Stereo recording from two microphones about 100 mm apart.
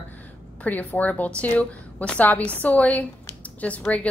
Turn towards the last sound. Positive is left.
turn(degrees=15)  # may be behind; listen again after turning